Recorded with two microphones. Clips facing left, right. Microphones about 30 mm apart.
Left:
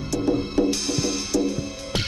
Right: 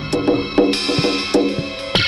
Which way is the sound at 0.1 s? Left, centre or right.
Right.